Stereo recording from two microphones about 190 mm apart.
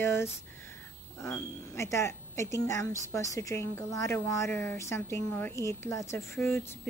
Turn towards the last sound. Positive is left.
turn(degrees=10)  # may be behind; listen again after turning